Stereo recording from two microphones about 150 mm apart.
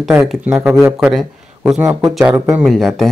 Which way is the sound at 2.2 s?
15° right (ahead or behind).